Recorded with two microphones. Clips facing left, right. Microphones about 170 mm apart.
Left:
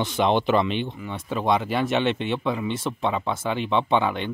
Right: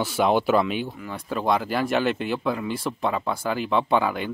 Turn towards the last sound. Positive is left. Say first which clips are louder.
# even
turn(degrees=-5)  # may be behind; listen again after turning